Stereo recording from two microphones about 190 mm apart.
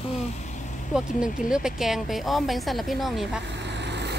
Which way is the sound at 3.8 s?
65° right (ahead or behind).